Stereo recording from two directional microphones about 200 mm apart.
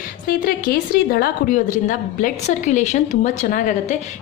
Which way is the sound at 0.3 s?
45° left (ahead or behind).